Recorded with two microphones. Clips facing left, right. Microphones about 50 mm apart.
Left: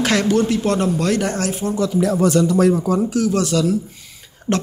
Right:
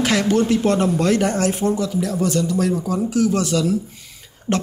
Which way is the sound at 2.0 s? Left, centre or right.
Left.